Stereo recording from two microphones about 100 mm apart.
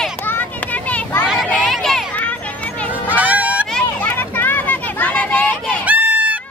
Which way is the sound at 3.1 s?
15° right (ahead or behind).